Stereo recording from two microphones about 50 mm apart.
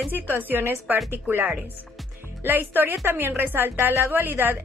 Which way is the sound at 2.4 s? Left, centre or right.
Right.